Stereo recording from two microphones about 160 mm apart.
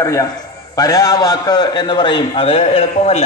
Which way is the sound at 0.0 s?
20° left (ahead or behind).